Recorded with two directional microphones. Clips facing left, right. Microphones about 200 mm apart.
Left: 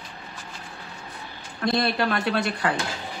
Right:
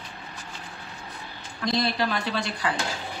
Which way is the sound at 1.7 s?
55° left (ahead or behind).